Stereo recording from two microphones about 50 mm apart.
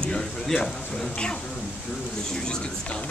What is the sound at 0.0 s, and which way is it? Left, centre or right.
Speech, centre.